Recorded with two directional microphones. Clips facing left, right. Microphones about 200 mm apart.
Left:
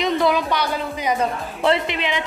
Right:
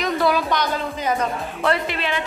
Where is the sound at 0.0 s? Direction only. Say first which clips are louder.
Left 1 dB; 20° left (ahead or behind).